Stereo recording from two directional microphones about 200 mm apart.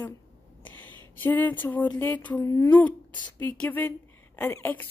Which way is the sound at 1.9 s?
10° left (ahead or behind).